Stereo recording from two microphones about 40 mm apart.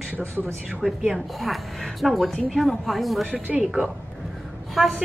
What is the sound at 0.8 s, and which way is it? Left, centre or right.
Speech, centre.